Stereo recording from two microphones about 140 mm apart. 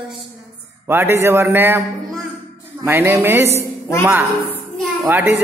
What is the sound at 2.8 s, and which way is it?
Speech, 20° right (ahead or behind).